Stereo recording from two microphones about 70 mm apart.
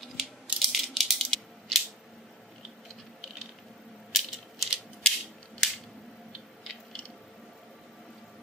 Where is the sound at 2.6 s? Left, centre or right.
Centre.